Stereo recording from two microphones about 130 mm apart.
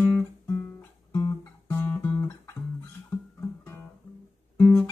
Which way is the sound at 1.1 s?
25° left (ahead or behind).